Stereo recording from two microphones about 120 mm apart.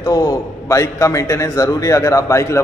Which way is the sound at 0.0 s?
30° left (ahead or behind).